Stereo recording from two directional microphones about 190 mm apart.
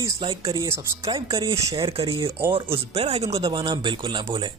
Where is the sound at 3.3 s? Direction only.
20° right (ahead or behind).